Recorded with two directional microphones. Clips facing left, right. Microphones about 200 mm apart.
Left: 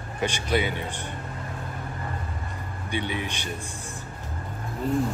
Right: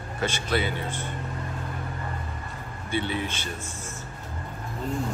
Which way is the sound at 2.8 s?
15° left (ahead or behind).